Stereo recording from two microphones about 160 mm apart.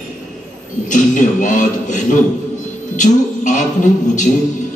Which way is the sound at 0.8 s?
50° left (ahead or behind).